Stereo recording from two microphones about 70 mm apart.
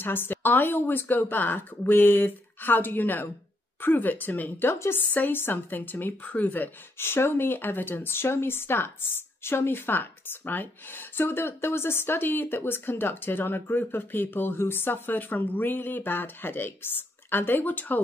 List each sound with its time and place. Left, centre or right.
0.0 s speech: left